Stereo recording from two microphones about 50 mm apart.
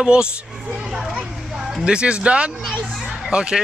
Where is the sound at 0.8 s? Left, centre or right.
Centre.